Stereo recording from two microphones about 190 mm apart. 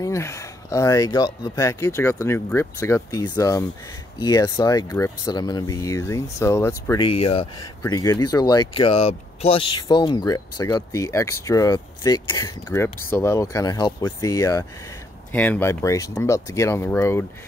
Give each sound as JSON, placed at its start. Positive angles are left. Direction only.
{"t": 0.0, "sound": "speech", "side_deg": 15}
{"t": 6.9, "sound": "speech", "side_deg": 25}
{"t": 7.8, "sound": "speech", "side_deg": 20}